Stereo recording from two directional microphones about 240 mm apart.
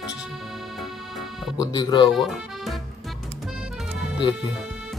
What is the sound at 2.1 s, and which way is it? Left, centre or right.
Speech, centre.